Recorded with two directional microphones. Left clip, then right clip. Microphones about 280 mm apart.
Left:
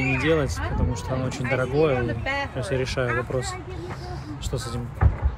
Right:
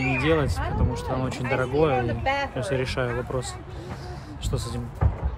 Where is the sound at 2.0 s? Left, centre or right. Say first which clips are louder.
Right 2 dB; right.